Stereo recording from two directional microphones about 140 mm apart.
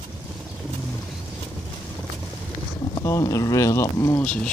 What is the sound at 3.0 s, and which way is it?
Speech, 20° left (ahead or behind).